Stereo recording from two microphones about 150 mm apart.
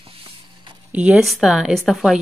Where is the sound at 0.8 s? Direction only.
10° right (ahead or behind).